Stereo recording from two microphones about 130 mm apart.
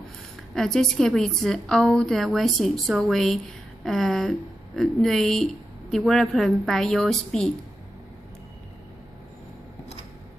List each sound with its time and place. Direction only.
0.6 s a woman's voice: 5° left (ahead or behind)